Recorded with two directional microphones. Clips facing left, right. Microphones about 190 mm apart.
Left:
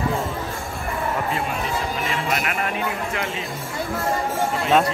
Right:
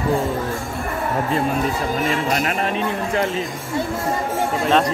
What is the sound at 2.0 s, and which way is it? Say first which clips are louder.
Music: right 4 dB; 35° right (ahead or behind).